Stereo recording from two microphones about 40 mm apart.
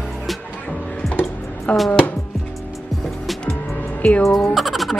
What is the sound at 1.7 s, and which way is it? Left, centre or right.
Speech, left.